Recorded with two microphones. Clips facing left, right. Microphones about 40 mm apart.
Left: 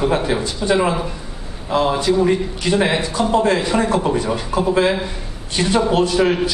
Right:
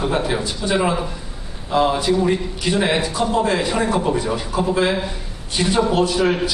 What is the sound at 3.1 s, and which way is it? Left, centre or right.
Speech, left.